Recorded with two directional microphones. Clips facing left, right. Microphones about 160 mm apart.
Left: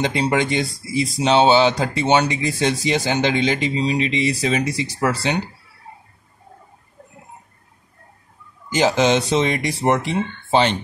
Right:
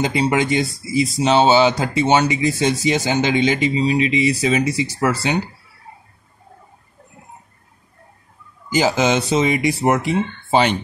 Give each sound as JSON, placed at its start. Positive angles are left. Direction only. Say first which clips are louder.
{"t": 0.0, "sound": "speech", "louder": "right 1 dB", "side_deg": -5}
{"t": 8.7, "sound": "speech", "louder": "even", "side_deg": -5}